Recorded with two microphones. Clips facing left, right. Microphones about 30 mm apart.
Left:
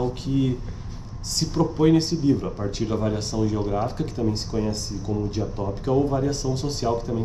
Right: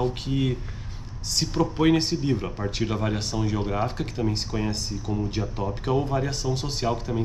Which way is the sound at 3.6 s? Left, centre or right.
Right.